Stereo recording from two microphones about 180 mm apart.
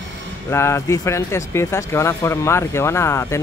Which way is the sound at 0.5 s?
15° left (ahead or behind).